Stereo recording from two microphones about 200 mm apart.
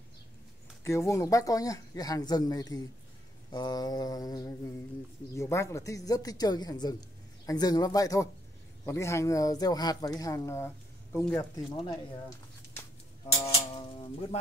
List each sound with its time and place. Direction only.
0.8 s speech: 15° left (ahead or behind)
3.5 s mantra: 20° left (ahead or behind)
5.3 s speech: 15° left (ahead or behind)
11.1 s mantra: 15° left (ahead or behind)
13.7 s music: 25° left (ahead or behind)